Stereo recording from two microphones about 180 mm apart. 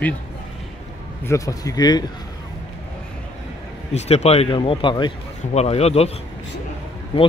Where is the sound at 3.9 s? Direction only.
35° left (ahead or behind).